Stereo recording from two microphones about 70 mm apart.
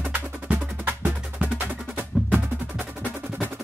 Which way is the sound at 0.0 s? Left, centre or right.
Right.